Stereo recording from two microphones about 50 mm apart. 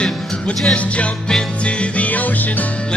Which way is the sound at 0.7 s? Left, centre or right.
Left.